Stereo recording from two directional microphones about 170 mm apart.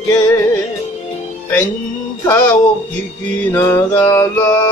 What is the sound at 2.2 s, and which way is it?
Music, 20° left (ahead or behind).